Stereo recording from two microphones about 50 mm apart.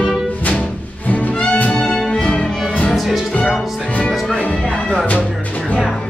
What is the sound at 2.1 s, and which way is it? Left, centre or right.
Music, left.